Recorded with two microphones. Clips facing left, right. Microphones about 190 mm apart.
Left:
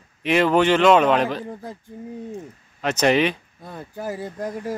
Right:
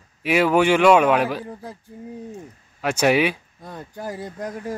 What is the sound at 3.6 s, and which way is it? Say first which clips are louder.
Speech: left 2 dB; 5° left (ahead or behind).